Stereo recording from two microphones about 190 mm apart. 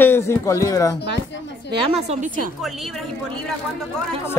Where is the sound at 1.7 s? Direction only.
25° right (ahead or behind).